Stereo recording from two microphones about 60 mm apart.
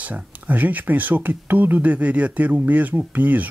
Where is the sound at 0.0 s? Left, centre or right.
Right.